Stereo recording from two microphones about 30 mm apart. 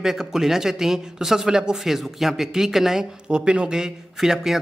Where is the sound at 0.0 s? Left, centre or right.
Centre.